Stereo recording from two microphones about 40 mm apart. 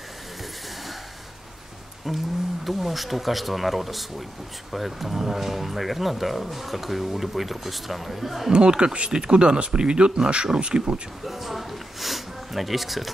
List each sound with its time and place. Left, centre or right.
2.1 s speech: centre
8.5 s speech: right
11.2 s a sound: centre